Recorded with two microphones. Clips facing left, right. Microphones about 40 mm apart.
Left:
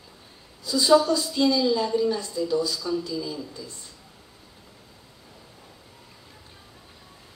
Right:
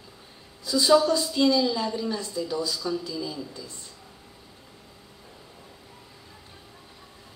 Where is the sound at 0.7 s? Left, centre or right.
Centre.